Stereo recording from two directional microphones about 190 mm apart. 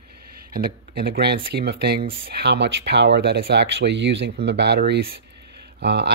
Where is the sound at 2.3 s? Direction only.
60° right (ahead or behind).